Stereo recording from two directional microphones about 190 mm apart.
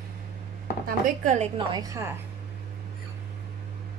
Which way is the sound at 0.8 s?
40° right (ahead or behind).